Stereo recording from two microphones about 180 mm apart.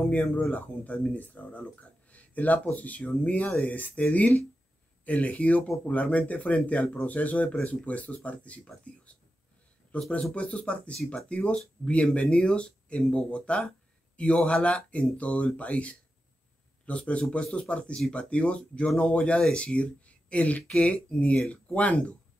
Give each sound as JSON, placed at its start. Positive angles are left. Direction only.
{"t": 0.0, "sound": "speech", "side_deg": 10}